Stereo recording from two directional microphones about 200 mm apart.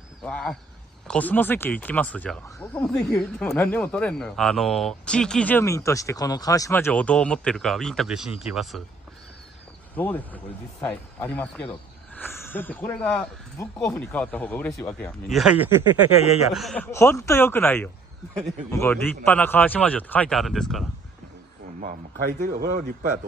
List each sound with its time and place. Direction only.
0.2 s speech: 5° left (ahead or behind)
9.9 s speech: 10° left (ahead or behind)
15.3 s speech: 5° right (ahead or behind)
16.2 s speech: 30° left (ahead or behind)
16.5 s speech: 5° left (ahead or behind)
22.1 s speech: 45° right (ahead or behind)